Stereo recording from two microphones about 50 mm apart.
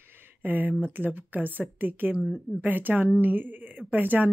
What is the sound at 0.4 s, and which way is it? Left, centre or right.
Speech, right.